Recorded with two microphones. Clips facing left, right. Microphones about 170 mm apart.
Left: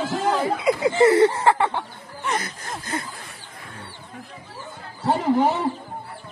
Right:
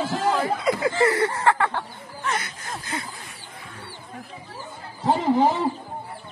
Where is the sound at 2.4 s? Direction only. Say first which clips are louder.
Left 2 dB; 40° left (ahead or behind).